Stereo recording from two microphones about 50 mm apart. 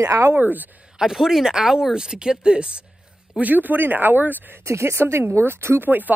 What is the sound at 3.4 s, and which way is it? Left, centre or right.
Speech, right.